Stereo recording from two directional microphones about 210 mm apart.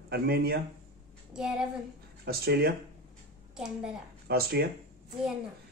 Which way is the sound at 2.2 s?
45° right (ahead or behind).